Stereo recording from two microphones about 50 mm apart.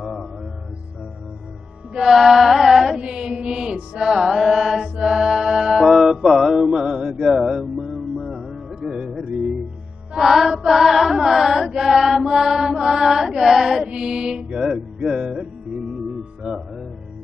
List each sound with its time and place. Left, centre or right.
0.0 s music: centre
2.0 s music: centre
3.0 s mantra: centre
4.1 s mantra: centre
7.2 s music: centre
8.6 s music: centre
10.1 s chant: centre
13.8 s chant: centre
15.0 s music: centre